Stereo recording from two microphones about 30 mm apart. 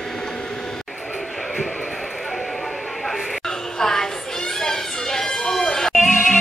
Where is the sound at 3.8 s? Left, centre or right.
Centre.